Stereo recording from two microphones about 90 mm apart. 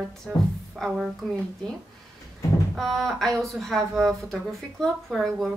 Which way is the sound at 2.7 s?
5° left (ahead or behind).